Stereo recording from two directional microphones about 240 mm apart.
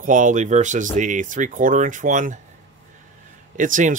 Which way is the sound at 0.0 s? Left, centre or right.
Right.